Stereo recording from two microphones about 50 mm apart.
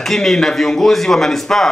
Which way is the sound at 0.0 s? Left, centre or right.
Centre.